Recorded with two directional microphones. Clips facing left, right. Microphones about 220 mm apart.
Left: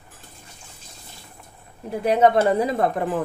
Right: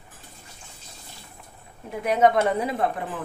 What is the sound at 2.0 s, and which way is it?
Speech, 30° left (ahead or behind).